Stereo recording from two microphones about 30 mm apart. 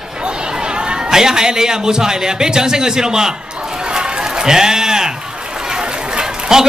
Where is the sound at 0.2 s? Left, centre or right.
Right.